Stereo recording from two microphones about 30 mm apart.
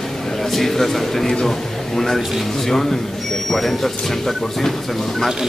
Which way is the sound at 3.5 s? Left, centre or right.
Centre.